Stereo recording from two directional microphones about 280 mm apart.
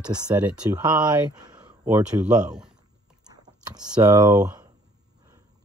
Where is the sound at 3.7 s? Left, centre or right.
Centre.